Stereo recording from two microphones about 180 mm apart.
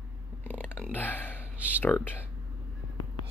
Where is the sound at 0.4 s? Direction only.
10° left (ahead or behind).